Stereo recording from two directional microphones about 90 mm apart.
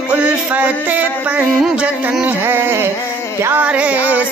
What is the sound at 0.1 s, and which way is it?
Music, 15° right (ahead or behind).